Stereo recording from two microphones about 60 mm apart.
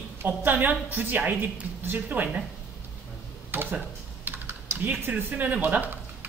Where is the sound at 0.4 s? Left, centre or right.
Right.